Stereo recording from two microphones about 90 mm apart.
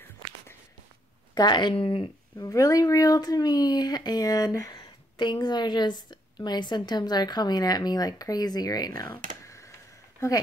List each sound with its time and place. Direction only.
1.3 s a woman's voice: 55° left (ahead or behind); by 2.0 s 75° left (ahead or behind)
2.3 s speech: 40° left (ahead or behind)